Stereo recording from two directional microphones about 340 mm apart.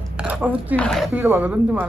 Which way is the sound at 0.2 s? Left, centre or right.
Centre.